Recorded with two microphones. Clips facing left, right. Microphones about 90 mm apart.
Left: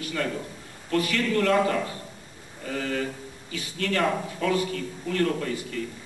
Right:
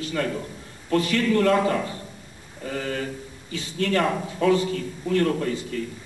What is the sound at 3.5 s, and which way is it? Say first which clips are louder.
A man's voice: right 4 dB; 25° right (ahead or behind).